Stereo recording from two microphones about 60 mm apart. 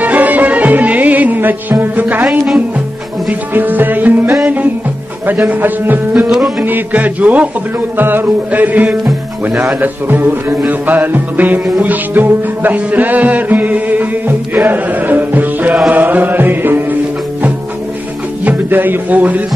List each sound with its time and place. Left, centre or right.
0.0 s music: right
2.2 s speech: centre
3.5 s music: right
5.5 s music: right
6.2 s music: centre
6.6 s music: right
8.0 s music: right
18.4 s a man's voice: right